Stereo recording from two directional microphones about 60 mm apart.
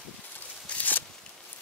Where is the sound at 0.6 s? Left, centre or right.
Left.